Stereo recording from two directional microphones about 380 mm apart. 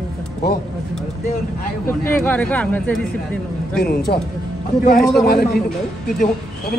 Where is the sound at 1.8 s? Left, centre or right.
Centre.